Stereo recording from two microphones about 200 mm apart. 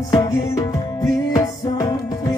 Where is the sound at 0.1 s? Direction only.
20° left (ahead or behind).